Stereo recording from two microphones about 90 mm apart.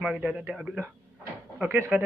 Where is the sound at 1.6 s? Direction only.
25° right (ahead or behind).